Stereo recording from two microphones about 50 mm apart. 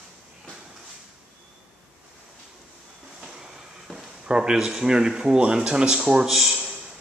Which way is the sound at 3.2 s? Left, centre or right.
Centre.